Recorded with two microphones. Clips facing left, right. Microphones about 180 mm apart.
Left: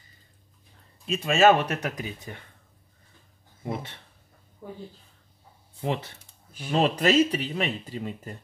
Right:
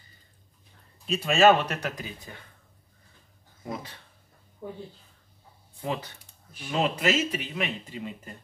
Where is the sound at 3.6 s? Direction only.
25° left (ahead or behind).